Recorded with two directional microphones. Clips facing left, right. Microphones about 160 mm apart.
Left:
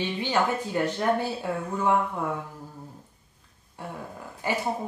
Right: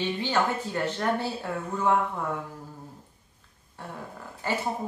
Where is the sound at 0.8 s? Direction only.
15° left (ahead or behind).